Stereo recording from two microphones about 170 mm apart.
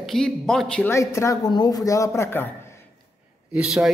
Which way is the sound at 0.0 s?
Centre (ahead or behind).